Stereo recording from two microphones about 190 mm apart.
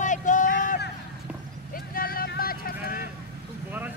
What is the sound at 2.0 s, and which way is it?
Vehicle, 50° left (ahead or behind).